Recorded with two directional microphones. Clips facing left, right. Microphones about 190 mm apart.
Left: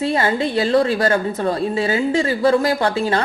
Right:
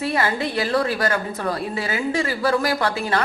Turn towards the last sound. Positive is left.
turn(degrees=30)  # may be behind; listen again after turning